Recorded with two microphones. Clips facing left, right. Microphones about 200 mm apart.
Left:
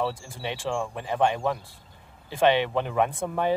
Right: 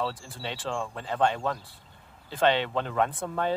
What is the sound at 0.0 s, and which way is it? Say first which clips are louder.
Speech: left 3 dB; 15° left (ahead or behind).